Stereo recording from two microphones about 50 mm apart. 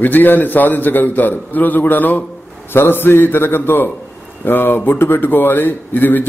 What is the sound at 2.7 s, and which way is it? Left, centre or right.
A man's voice, left.